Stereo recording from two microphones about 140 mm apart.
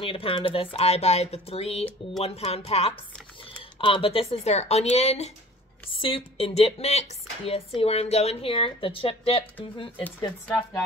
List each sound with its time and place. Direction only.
0.0 s speech: 40° left (ahead or behind)
5.9 s speech: 40° left (ahead or behind)